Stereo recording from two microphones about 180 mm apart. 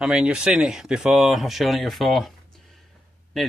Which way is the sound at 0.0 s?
5° right (ahead or behind).